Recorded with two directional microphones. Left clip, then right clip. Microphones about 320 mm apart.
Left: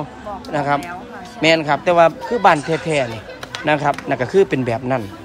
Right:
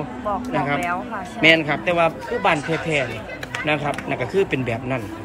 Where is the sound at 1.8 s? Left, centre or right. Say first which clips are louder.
Left 7 dB; left.